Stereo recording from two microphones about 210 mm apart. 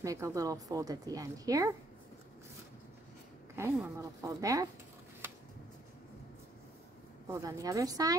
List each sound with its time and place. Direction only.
0.0 s a woman's voice: 15° right (ahead or behind)
3.7 s a woman's voice: 10° right (ahead or behind)
7.2 s a woman's voice: 15° right (ahead or behind)